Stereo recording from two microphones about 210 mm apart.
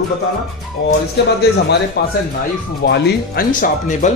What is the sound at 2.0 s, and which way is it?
Speech, 50° left (ahead or behind).